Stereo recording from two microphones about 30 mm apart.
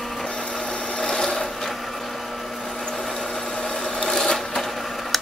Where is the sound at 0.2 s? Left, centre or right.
Left.